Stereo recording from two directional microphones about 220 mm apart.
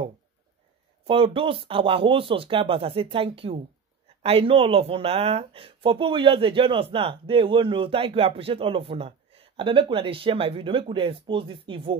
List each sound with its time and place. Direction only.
1.0 s speech: 25° right (ahead or behind)